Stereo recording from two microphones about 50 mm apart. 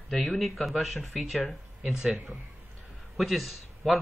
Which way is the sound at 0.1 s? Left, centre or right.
Centre.